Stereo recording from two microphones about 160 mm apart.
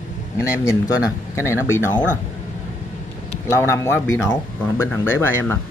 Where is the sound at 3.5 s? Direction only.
20° left (ahead or behind).